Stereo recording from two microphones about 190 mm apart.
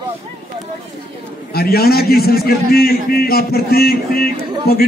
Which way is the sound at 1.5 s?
55° left (ahead or behind).